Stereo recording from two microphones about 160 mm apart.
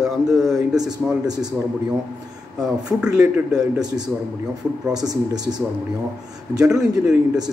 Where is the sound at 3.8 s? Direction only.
25° right (ahead or behind).